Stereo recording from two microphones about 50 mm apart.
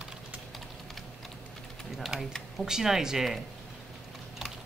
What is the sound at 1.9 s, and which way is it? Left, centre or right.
Typing, centre.